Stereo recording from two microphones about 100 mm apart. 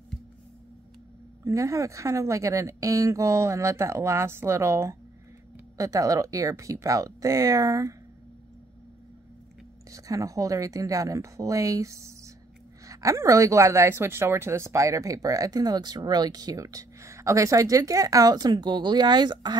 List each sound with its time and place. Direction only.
1.4 s a woman's voice: 30° right (ahead or behind)
9.8 s a woman's voice: 35° right (ahead or behind)